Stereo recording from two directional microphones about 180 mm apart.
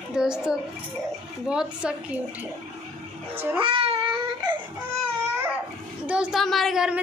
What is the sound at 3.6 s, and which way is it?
Speech, 30° right (ahead or behind).